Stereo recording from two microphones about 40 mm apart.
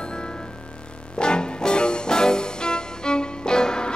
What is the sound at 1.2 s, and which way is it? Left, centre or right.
Music, left.